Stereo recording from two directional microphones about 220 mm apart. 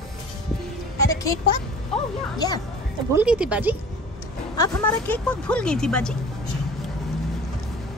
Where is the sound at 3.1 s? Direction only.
5° right (ahead or behind).